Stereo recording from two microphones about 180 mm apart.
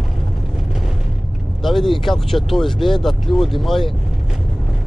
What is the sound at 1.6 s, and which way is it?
Speech, centre (ahead or behind).